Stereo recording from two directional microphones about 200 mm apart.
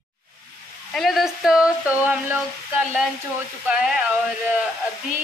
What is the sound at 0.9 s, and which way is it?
Speech, centre (ahead or behind).